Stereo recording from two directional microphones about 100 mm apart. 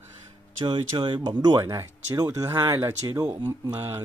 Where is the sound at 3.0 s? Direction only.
40° right (ahead or behind).